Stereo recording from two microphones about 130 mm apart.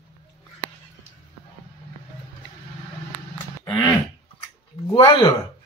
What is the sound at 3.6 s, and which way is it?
Throat clearing, 25° left (ahead or behind).